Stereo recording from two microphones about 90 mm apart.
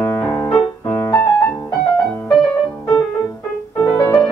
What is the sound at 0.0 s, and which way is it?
Music, 30° left (ahead or behind).